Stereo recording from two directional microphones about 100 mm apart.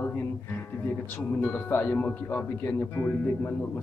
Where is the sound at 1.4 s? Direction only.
20° left (ahead or behind).